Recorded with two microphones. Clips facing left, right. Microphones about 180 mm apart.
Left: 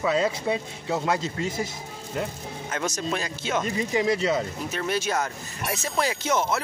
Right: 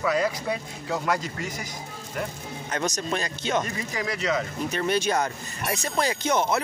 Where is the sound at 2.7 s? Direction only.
5° left (ahead or behind).